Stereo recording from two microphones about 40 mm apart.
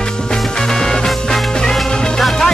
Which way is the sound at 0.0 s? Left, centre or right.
Centre.